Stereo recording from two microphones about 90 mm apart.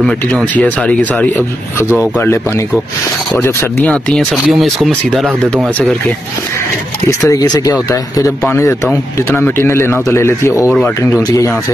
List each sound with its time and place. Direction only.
0.6 s speech: 15° left (ahead or behind)
3.8 s speech: 10° left (ahead or behind)
4.5 s speech: centre (ahead or behind)
7.1 s speech: 35° left (ahead or behind)
8.5 s speech: 30° left (ahead or behind)